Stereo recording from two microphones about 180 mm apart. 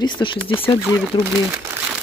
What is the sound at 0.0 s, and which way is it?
Speech, 25° left (ahead or behind).